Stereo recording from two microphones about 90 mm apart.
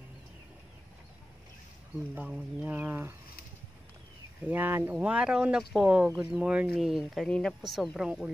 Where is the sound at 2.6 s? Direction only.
20° right (ahead or behind).